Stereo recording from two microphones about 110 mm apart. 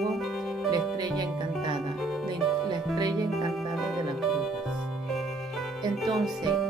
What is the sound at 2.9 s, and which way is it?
Speech, 35° right (ahead or behind).